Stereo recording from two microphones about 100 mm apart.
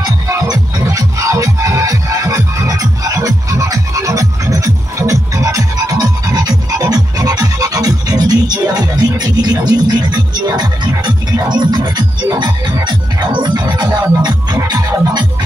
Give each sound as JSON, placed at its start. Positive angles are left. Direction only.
{"t": 0.3, "sound": "music", "side_deg": -35}